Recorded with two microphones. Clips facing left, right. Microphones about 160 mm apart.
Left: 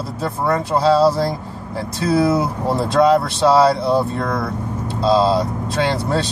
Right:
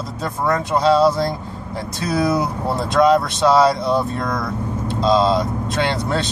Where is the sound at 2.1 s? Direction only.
25° left (ahead or behind).